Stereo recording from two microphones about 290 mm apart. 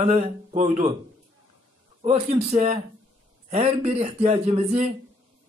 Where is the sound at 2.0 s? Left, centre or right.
Right.